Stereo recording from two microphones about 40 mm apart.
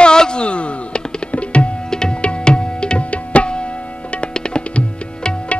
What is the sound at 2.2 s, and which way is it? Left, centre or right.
Music, left.